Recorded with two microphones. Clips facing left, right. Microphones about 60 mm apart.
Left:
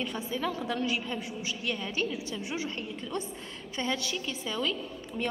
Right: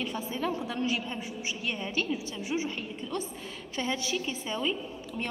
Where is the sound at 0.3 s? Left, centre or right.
Right.